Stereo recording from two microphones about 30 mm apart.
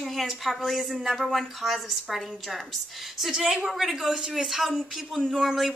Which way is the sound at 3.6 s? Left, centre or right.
Centre.